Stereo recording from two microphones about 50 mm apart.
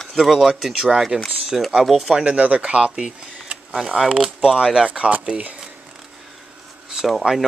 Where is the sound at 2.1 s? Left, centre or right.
Right.